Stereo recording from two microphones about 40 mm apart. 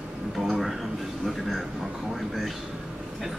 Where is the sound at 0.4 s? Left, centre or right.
Centre.